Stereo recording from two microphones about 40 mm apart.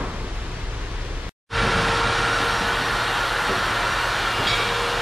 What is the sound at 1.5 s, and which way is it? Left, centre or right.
Vehicle, centre.